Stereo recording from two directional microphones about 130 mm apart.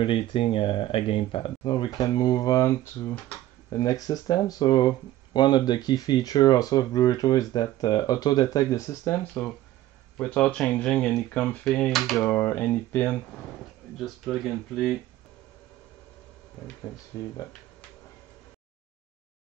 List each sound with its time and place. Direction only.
0.0 s speech: 40° left (ahead or behind); by 13.2 s 15° left (ahead or behind)
13.9 s speech: centre (ahead or behind)